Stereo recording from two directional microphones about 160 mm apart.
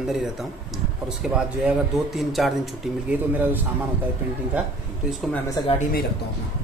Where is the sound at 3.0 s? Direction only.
10° right (ahead or behind).